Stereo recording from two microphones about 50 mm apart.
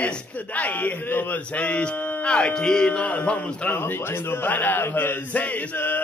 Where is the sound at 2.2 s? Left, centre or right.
Left.